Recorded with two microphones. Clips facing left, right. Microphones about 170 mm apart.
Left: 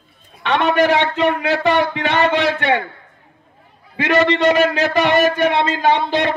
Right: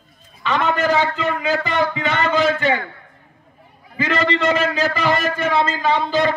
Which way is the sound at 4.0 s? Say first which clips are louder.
Left 4 dB; 70° left (ahead or behind).